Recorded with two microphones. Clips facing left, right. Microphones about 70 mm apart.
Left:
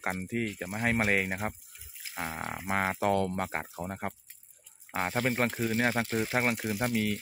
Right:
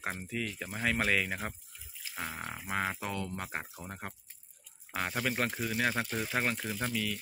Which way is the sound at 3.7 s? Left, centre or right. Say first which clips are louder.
Left 7 dB; left.